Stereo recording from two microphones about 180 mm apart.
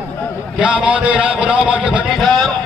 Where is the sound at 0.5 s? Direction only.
5° right (ahead or behind).